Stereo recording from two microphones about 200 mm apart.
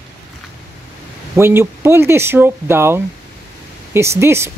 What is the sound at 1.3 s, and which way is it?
Speech, 10° right (ahead or behind).